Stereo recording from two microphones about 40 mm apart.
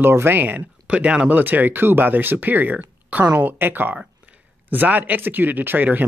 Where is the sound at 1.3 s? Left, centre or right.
Right.